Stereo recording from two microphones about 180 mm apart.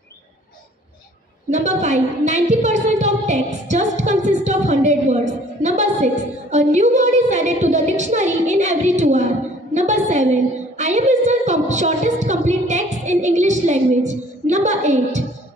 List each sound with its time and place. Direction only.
1.5 s a woman's voice: 40° right (ahead or behind)